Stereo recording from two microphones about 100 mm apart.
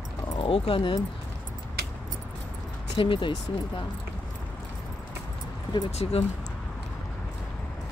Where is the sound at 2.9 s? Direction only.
60° left (ahead or behind).